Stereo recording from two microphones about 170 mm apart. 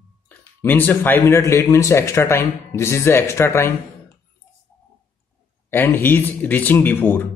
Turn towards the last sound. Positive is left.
turn(degrees=10)  # may be behind; listen again after turning